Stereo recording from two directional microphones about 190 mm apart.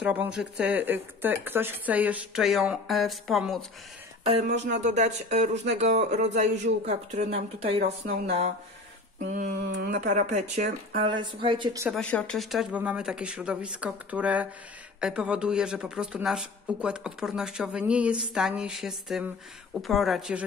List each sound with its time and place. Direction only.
0.0 s speech: 5° right (ahead or behind)
4.2 s speech: 35° right (ahead or behind)
9.7 s speech: 55° right (ahead or behind)
9.9 s speech: 40° right (ahead or behind)
11.1 s speech: 25° right (ahead or behind)
11.9 s speech: 5° left (ahead or behind)